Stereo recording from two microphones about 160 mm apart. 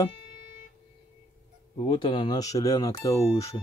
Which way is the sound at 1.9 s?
30° left (ahead or behind).